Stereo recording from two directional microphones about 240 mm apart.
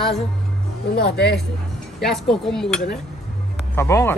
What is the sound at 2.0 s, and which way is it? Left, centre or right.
A woman's voice, centre.